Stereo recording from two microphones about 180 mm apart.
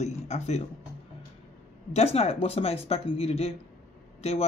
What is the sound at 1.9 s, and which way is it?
A woman's voice, 35° left (ahead or behind).